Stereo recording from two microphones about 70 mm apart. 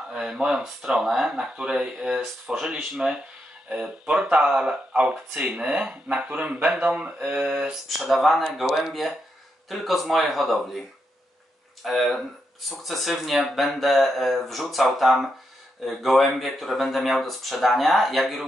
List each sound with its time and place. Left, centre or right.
0.1 s speech: centre
7.6 s speech: centre
11.8 s speech: centre